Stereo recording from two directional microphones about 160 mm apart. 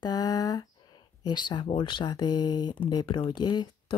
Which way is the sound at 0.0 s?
25° left (ahead or behind).